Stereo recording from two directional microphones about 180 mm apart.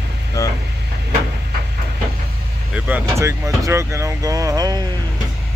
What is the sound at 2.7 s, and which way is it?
Speech, 10° right (ahead or behind).